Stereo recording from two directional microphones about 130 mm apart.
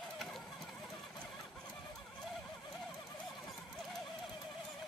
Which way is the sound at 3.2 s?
Centre (ahead or behind).